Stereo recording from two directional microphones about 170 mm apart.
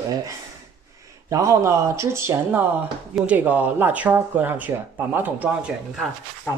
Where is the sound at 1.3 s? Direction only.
15° right (ahead or behind).